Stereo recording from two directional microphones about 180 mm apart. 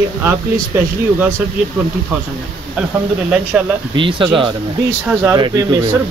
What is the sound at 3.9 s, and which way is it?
Speech, 25° right (ahead or behind).